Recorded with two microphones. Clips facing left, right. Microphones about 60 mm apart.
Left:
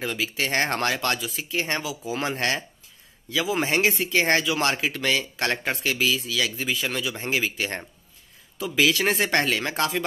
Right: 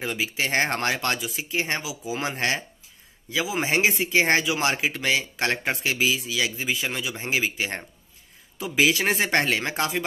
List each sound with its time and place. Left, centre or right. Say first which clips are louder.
0.0 s a man's voice: even; right